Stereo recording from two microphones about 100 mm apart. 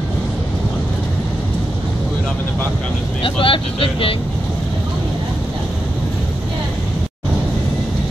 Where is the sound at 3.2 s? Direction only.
60° left (ahead or behind).